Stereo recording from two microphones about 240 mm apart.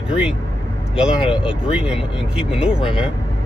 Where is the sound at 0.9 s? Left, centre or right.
Centre.